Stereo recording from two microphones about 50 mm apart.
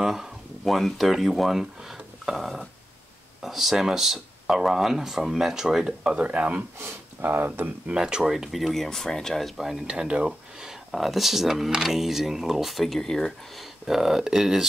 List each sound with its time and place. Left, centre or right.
0.0 s speech: centre; by 6.6 s right
6.8 s speech: right
7.9 s speech: centre
8.2 s speech: centre
9.8 s speech: centre
13.8 s speech: centre